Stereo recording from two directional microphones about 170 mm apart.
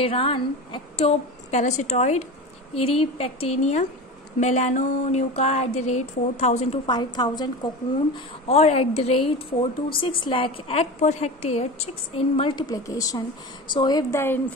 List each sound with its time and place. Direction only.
0.0 s a woman's voice: 30° left (ahead or behind)
6.9 s a woman's voice: 25° left (ahead or behind)
8.5 s a woman's voice: 35° left (ahead or behind); by 14.4 s 15° left (ahead or behind)